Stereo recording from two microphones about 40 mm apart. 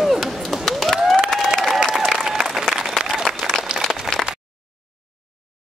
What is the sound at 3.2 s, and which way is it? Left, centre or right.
Applause, centre.